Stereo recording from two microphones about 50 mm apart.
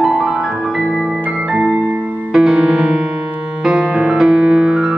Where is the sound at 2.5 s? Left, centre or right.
Centre.